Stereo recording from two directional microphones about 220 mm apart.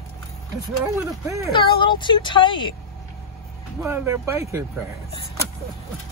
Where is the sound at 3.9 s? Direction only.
10° right (ahead or behind).